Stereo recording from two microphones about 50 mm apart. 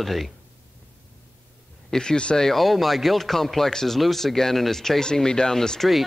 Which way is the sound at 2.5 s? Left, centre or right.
Centre.